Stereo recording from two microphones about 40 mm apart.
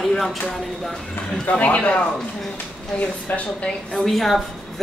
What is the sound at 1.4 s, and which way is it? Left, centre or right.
Speech, left.